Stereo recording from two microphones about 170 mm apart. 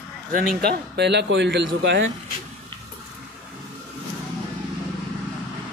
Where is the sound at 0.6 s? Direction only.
85° right.